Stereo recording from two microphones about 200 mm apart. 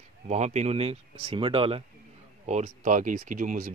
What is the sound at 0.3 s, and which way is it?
Speech, 35° right (ahead or behind).